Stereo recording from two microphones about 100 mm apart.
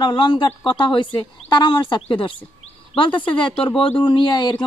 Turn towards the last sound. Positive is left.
turn(degrees=45)  # may be behind; listen again after turning